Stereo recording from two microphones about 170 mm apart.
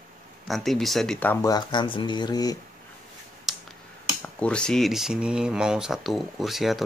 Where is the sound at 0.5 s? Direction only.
Centre (ahead or behind); by 2.6 s 20° left (ahead or behind).